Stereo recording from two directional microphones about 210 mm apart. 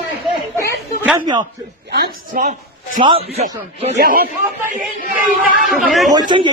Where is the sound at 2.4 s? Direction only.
40° right (ahead or behind).